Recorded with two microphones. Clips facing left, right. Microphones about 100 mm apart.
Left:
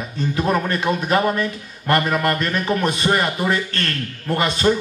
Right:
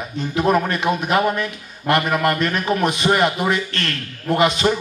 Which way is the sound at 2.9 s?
40° left (ahead or behind).